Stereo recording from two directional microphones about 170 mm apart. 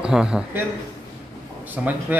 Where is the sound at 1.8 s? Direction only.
10° right (ahead or behind).